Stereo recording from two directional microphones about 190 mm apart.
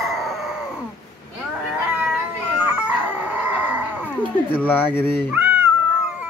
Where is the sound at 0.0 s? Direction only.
Centre (ahead or behind).